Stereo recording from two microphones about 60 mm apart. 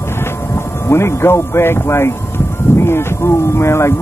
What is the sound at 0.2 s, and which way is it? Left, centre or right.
Speech, left.